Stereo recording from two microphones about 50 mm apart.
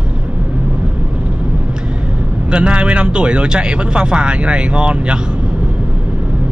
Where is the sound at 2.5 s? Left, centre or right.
Centre.